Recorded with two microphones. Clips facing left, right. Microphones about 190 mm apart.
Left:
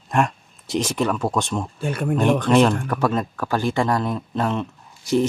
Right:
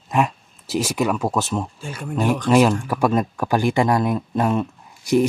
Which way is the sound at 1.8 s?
60° left (ahead or behind).